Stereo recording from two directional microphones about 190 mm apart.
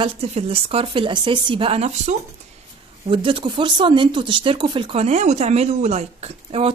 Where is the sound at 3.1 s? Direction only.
30° right (ahead or behind).